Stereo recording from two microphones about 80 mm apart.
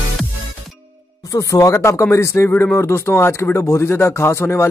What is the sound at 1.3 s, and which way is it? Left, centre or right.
Speech, left.